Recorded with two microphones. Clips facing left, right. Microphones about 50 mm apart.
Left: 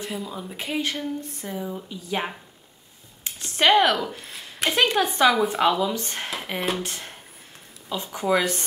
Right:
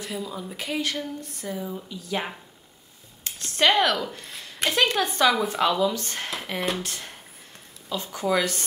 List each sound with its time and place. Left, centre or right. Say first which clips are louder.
0.1 s speech: even; centre
3.3 s speech: left 2 dB; centre
4.6 s speech: left 2 dB; centre
6.3 s speech: left 1 dB; centre
6.8 s speech: left 2 dB; centre